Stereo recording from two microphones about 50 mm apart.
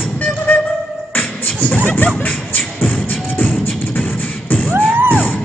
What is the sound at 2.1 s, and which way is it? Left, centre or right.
Music, left.